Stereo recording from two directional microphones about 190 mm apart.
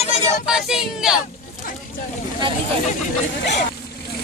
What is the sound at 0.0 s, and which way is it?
Child singing, 35° left (ahead or behind).